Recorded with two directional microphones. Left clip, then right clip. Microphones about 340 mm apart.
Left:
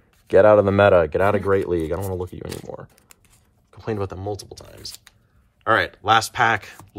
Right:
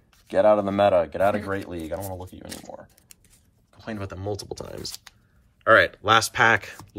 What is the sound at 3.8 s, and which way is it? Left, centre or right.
Speech, centre.